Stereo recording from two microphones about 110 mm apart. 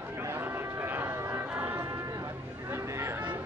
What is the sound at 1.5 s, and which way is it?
Music, 15° right (ahead or behind).